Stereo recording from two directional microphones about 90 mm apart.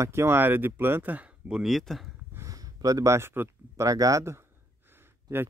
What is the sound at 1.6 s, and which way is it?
Speech, centre (ahead or behind).